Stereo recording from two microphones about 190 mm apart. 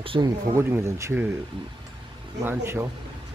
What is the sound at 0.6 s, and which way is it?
Speech, 15° right (ahead or behind).